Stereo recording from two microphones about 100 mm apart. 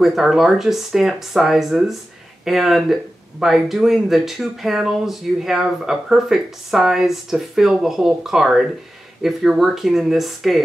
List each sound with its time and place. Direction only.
0.0 s speech: 5° right (ahead or behind)